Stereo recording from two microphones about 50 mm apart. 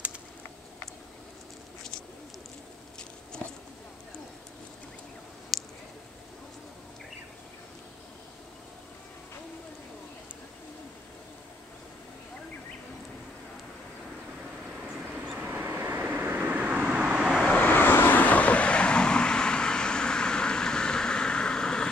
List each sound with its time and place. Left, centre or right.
5.5 s a sound: centre
14.8 s vehicle: centre
15.3 s vehicle: right; by 17.5 s centre
17.6 s vehicle: left; by 21.8 s centre